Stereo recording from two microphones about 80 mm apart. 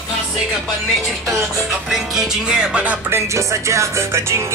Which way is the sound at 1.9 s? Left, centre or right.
Centre.